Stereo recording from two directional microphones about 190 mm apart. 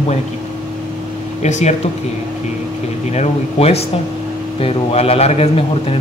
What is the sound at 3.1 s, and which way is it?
A man's voice, 35° left (ahead or behind).